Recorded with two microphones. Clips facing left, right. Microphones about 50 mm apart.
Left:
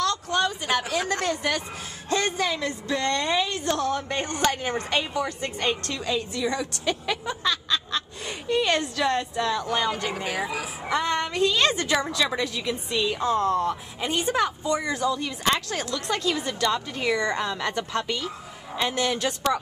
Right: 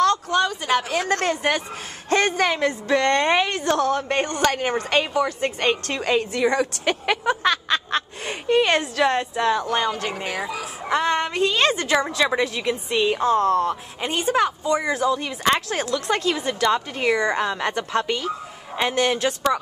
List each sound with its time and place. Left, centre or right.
0.0 s a sound: right
0.7 s a woman's voice: right
0.9 s a woman's voice: right
10.0 s a woman's voice: centre
10.9 s a woman's voice: right
17.0 s a woman's voice: centre; by 19.2 s right
19.2 s speech: centre